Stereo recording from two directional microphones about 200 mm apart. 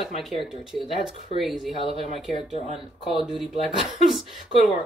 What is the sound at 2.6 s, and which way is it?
Speech, 30° right (ahead or behind).